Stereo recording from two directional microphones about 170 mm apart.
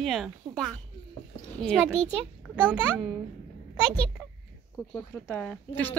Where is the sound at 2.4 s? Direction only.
5° right (ahead or behind).